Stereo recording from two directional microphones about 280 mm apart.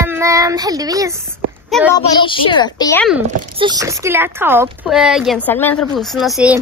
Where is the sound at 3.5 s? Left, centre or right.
Centre.